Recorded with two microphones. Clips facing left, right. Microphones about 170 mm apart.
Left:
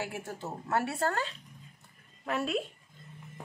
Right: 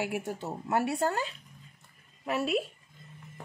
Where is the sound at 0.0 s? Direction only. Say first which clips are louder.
Right 4 dB; 15° right (ahead or behind).